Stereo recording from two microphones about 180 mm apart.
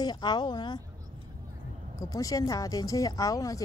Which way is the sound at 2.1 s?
20° left (ahead or behind).